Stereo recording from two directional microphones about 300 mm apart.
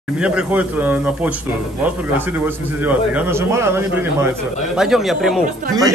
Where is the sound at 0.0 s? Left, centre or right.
Centre.